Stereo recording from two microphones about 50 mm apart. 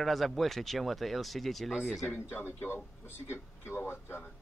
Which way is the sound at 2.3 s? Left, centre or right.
Left.